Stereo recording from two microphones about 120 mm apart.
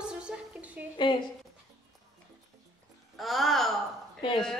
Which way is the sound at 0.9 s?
40° left (ahead or behind).